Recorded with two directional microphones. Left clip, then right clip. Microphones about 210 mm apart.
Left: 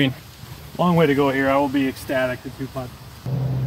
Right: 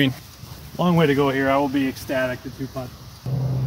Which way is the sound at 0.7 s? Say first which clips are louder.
Left 1 dB; 25° right (ahead or behind).